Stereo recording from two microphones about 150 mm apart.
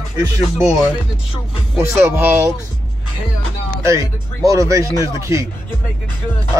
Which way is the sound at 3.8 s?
20° right (ahead or behind).